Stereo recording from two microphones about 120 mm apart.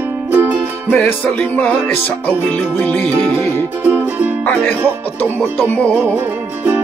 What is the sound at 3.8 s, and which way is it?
Music, 15° right (ahead or behind).